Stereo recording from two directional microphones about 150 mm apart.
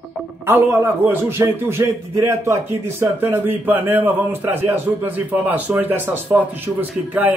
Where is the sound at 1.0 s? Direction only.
15° right (ahead or behind).